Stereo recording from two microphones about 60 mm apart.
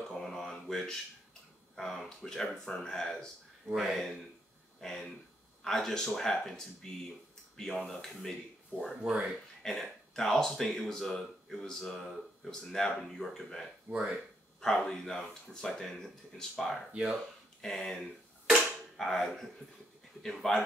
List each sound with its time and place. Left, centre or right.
0.1 s mantra: centre
1.8 s speech: centre
7.7 s speech: centre
8.0 s speech: centre
13.8 s speech: centre
14.6 s speech: centre
16.9 s speech: centre
17.2 s speech: centre